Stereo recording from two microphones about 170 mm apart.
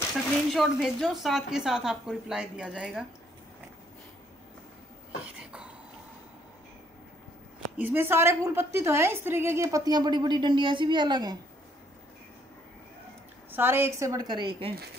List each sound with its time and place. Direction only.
0.3 s a woman's voice: centre (ahead or behind)
5.4 s a sound: 5° right (ahead or behind)
7.7 s a woman's voice: 10° right (ahead or behind)
13.5 s a woman's voice: 10° right (ahead or behind)